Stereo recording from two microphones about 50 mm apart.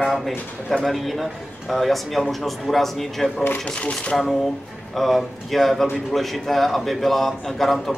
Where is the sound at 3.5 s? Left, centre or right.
Left.